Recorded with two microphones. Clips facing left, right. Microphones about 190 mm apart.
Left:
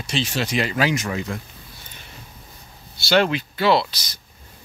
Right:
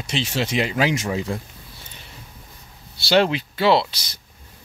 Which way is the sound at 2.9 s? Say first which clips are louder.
Right 1 dB; 30° right (ahead or behind).